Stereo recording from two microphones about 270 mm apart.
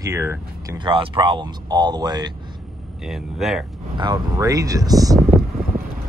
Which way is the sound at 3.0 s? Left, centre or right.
Centre.